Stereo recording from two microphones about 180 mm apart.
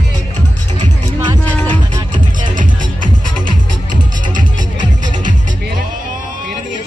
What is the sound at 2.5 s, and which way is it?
Music, 45° right (ahead or behind).